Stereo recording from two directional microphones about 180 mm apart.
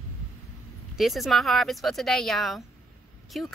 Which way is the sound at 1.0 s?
Centre (ahead or behind).